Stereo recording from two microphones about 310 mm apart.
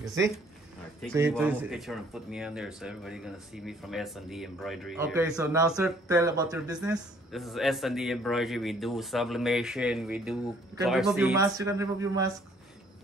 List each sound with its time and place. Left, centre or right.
1.3 s speech: centre